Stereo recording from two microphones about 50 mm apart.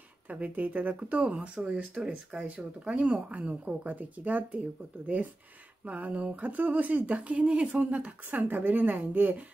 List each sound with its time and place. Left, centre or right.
0.3 s speech: right